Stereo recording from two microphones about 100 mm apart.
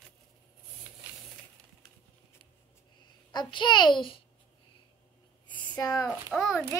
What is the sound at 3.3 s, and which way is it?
Speech, 50° left (ahead or behind).